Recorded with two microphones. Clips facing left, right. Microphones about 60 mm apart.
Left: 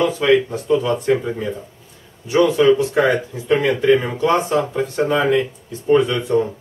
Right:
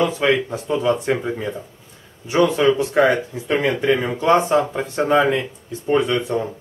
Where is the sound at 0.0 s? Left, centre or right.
Right.